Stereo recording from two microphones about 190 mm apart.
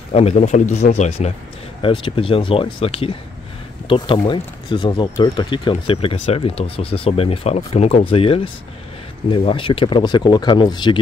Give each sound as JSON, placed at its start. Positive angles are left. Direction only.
{"t": 0.1, "sound": "speech", "side_deg": 35}